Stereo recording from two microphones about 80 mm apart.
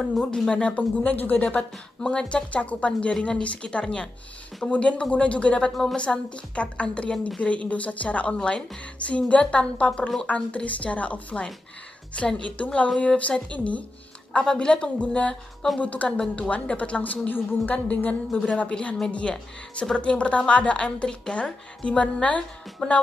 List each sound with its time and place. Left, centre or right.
0.2 s a woman's voice: centre